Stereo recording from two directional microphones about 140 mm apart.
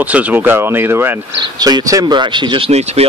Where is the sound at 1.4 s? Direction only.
30° right (ahead or behind); by 3.0 s 50° right (ahead or behind).